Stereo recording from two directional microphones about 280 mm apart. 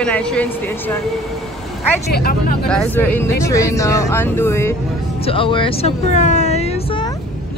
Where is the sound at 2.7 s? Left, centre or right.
Centre.